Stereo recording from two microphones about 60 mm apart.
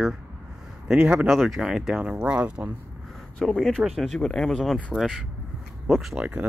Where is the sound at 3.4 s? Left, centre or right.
Centre.